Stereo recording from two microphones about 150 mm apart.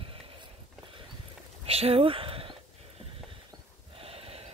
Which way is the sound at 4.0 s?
40° right (ahead or behind).